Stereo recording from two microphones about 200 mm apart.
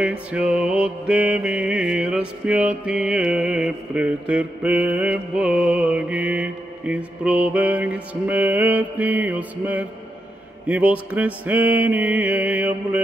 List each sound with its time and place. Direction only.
0.0 s mantra: 5° right (ahead or behind)